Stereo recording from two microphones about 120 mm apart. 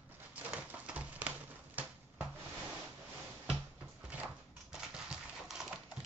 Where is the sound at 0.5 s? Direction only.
10° right (ahead or behind).